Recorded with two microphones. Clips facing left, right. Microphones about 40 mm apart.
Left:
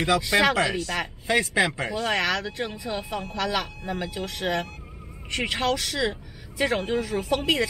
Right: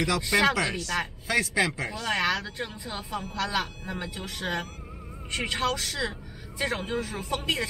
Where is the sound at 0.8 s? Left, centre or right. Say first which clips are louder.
Left 1 dB; centre.